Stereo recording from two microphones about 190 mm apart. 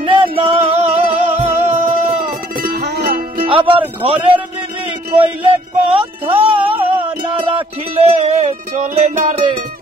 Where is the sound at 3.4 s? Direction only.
30° right (ahead or behind).